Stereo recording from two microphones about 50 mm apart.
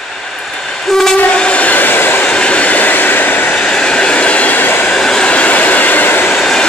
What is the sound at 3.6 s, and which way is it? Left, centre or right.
Train, centre.